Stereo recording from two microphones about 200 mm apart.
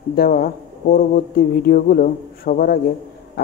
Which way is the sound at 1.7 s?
45° left (ahead or behind).